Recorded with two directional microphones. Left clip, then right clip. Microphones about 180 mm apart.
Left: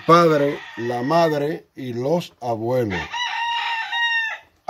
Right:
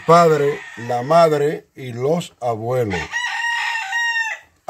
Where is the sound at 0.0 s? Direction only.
50° right (ahead or behind).